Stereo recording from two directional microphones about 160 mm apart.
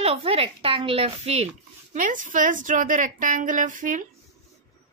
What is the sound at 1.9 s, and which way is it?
A woman's voice, 55° right (ahead or behind).